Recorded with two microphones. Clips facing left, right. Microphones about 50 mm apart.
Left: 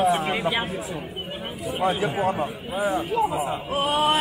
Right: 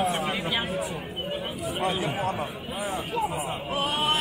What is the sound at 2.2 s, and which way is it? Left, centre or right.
Speech, left.